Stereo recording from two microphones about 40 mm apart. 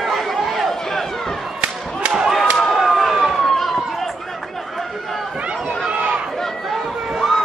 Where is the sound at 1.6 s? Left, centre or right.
Right.